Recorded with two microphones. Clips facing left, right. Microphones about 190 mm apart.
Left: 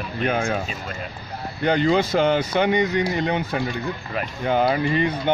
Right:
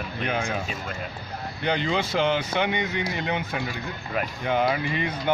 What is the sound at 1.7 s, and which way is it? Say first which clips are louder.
Speech: left 7 dB; 45° left (ahead or behind).